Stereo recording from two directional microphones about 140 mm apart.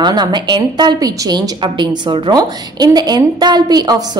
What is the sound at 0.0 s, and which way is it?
A woman's voice, 30° right (ahead or behind).